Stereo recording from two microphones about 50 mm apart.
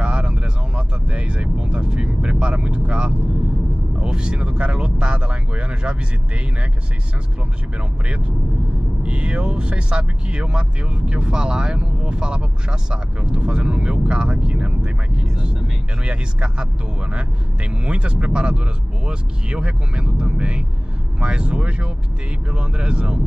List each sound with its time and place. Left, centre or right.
0.0 s vehicle: centre
4.0 s speech: centre
9.0 s speech: centre